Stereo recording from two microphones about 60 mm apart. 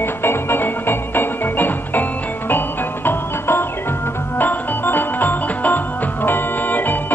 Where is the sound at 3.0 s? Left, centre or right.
Left.